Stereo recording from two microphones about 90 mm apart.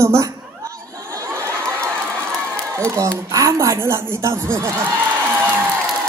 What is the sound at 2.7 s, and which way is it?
Speech, 35° right (ahead or behind).